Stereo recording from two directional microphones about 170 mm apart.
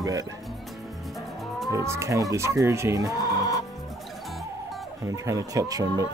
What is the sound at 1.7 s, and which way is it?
Speech, 15° right (ahead or behind).